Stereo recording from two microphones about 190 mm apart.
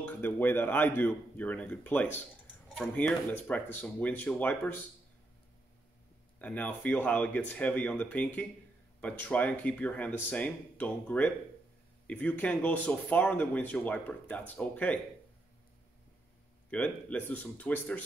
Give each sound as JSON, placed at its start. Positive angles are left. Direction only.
{"t": 0.0, "sound": "speech", "side_deg": 10}
{"t": 6.4, "sound": "speech", "side_deg": 10}
{"t": 16.7, "sound": "speech", "side_deg": 5}